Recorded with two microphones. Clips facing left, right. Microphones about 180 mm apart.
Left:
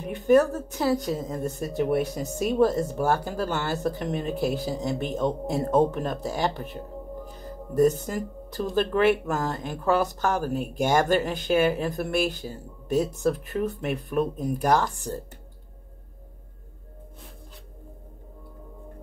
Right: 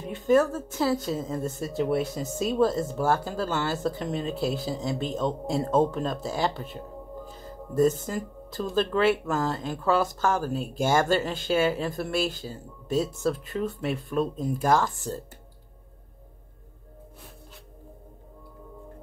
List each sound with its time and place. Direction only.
0.0 s speech: 20° left (ahead or behind)
7.2 s music: 15° left (ahead or behind)
8.7 s speech: 15° left (ahead or behind)